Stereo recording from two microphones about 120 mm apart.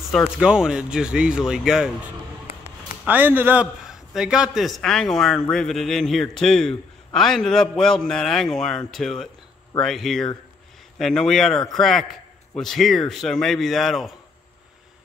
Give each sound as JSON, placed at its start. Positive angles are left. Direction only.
{"t": 0.1, "sound": "speech", "side_deg": -5}
{"t": 3.8, "sound": "a man's voice", "side_deg": -5}